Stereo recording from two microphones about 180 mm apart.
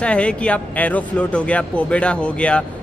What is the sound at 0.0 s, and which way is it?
Speech, 5° left (ahead or behind).